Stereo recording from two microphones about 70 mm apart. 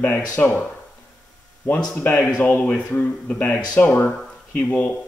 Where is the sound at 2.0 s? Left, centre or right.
Left.